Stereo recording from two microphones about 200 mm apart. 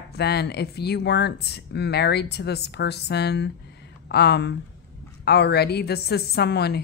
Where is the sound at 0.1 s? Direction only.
55° left (ahead or behind).